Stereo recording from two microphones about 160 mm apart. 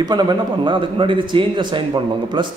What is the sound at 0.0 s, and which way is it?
A man's voice, 25° right (ahead or behind).